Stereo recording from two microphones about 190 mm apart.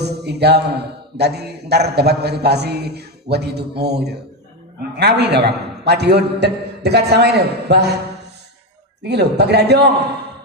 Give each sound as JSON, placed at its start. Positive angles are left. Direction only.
{"t": 0.0, "sound": "a man's voice", "side_deg": -60}
{"t": 9.0, "sound": "a man's voice", "side_deg": -60}